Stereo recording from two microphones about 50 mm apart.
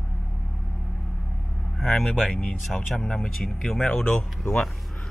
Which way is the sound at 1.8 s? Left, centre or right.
Centre.